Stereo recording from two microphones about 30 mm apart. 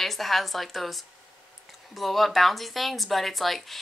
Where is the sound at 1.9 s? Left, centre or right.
Centre.